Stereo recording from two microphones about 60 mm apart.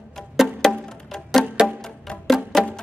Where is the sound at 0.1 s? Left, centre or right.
Centre.